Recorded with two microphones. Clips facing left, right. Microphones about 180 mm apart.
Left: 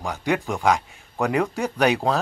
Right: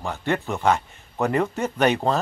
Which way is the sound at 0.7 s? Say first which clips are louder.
Even; centre (ahead or behind).